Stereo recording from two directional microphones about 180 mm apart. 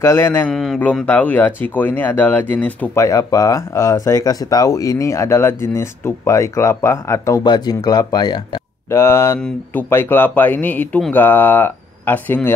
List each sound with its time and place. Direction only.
0.0 s speech: 15° left (ahead or behind)